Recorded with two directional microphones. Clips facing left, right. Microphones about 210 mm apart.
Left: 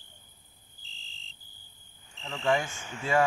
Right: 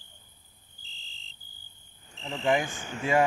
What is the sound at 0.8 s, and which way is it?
Cricket, centre (ahead or behind).